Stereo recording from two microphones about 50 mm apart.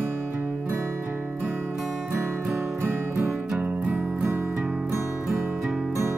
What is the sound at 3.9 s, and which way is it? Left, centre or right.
Music, right.